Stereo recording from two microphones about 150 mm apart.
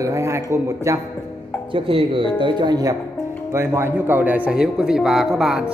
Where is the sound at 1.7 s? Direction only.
35° right (ahead or behind).